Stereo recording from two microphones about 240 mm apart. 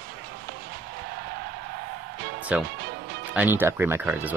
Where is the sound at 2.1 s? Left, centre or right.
Right.